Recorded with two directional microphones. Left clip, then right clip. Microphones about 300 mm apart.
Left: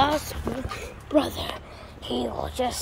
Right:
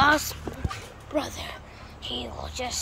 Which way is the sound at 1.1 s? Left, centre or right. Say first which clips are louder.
Left 6 dB; left.